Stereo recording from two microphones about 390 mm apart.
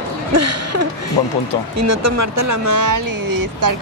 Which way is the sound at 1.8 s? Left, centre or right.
Right.